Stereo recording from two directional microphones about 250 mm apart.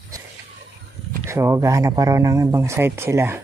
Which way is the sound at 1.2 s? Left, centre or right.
Centre.